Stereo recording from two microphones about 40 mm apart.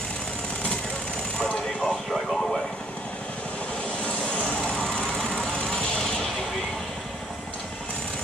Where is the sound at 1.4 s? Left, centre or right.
Left.